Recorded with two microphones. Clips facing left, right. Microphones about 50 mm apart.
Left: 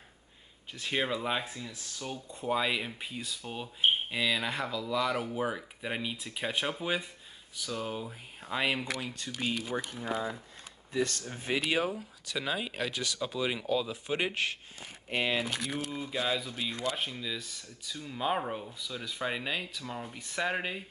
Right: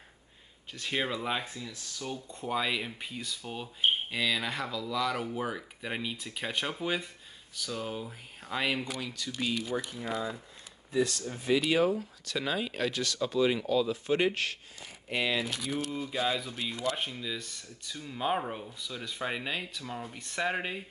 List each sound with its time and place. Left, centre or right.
0.8 s speech: centre
1.4 s speech: centre
9.0 s speech: left
9.8 s speech: left
11.3 s speech: left
11.9 s speech: centre
15.0 s speech: left
15.9 s speech: centre